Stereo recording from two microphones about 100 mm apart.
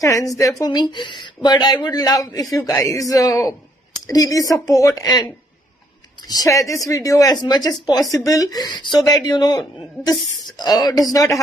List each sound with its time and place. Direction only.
0.0 s speech: 35° left (ahead or behind)
0.7 s a woman's voice: 45° left (ahead or behind)